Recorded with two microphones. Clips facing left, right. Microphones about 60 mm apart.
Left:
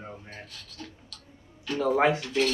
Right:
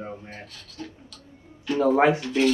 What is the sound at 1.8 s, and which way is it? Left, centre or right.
Speech, right.